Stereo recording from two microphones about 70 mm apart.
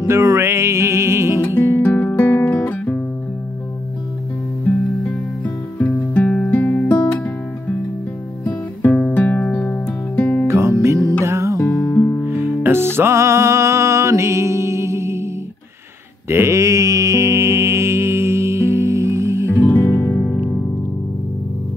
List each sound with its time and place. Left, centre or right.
0.0 s music: right
1.4 s music: left
4.6 s music: left
8.8 s music: left
10.4 s music: right
11.5 s music: left
11.9 s music: left
12.3 s music: right
16.3 s mantra: right
19.5 s music: left
19.8 s music: left